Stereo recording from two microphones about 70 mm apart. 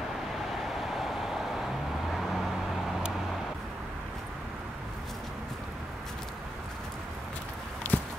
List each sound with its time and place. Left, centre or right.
0.5 s vehicle: centre
7.8 s walk: left